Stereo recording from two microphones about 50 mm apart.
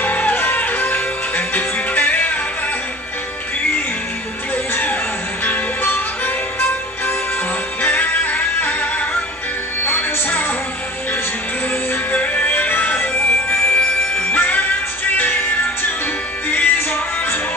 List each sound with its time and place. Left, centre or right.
0.0 s music: left
5.4 s music: left
7.8 s music: left
9.8 s music: left
12.1 s music: left
16.4 s music: left